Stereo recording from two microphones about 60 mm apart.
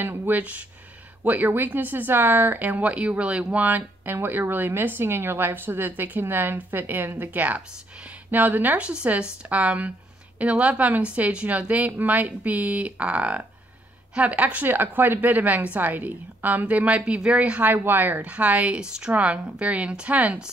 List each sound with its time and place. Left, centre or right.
0.0 s speech: right
0.4 s a woman's voice: right